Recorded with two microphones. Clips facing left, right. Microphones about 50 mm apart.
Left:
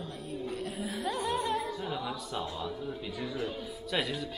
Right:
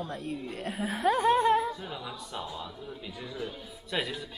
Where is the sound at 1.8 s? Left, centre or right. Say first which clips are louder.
Left 4 dB; centre.